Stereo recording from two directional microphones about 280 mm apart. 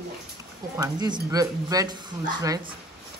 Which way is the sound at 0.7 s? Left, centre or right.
Centre.